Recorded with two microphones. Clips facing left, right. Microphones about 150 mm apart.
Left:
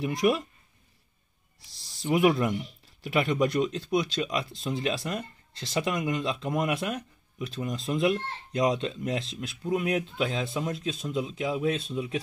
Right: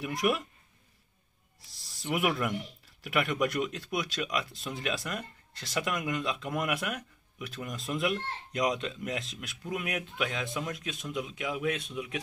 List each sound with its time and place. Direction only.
0.2 s speech: 30° left (ahead or behind)
1.8 s a sound: centre (ahead or behind)
2.1 s speech: 20° left (ahead or behind)